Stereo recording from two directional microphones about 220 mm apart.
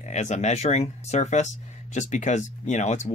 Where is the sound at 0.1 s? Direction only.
30° left (ahead or behind).